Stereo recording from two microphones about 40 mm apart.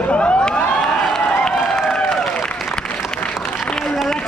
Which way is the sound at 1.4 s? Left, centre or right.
Centre.